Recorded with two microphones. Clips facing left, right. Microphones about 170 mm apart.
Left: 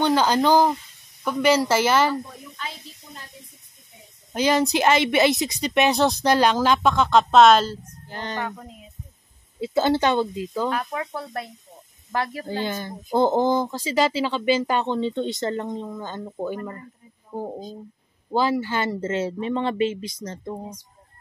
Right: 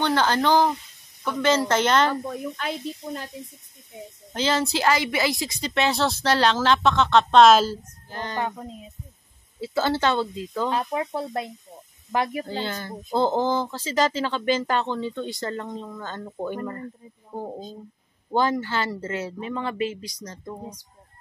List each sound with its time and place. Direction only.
0.0 s speech: 10° left (ahead or behind)
2.0 s speech: 60° right (ahead or behind)
4.3 s speech: 15° left (ahead or behind); by 7.8 s 5° right (ahead or behind)
8.1 s speech: 20° left (ahead or behind)
8.4 s speech: 20° right (ahead or behind)
9.6 s speech: 20° left (ahead or behind)
10.7 s speech: 25° right (ahead or behind)
12.6 s speech: 15° left (ahead or behind)